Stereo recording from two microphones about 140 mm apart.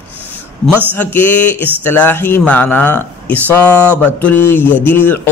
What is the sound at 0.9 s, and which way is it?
Speech, 15° left (ahead or behind).